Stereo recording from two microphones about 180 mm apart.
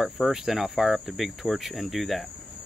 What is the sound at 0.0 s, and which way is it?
Speech, centre (ahead or behind).